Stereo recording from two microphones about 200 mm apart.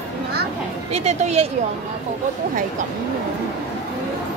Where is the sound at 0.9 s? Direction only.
35° right (ahead or behind).